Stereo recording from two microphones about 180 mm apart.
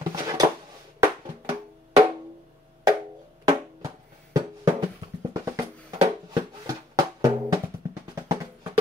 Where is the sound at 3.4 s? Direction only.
20° right (ahead or behind).